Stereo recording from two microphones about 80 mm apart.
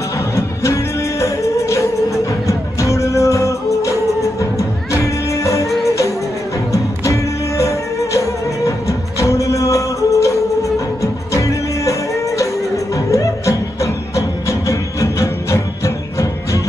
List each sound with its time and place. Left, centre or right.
1.2 s music: left
14.7 s music: left